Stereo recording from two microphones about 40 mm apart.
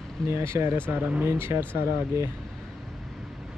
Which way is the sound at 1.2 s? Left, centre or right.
Right.